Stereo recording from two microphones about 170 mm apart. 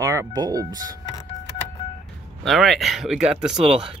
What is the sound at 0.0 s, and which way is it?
Speech, 20° right (ahead or behind).